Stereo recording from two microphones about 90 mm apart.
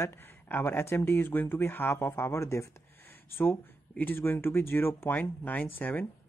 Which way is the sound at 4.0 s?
20° left (ahead or behind).